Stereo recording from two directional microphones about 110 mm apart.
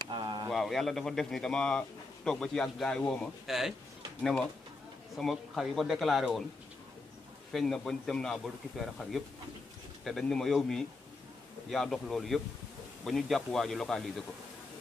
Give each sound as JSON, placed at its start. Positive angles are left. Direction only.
{"t": 0.1, "sound": "a sound", "side_deg": -45}
{"t": 0.5, "sound": "a man's voice", "side_deg": 0}
{"t": 7.5, "sound": "a man's voice", "side_deg": 5}